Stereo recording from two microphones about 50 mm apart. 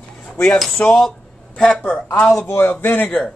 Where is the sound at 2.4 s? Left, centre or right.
Left.